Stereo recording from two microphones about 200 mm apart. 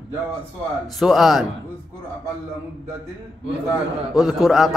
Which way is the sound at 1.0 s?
Centre (ahead or behind).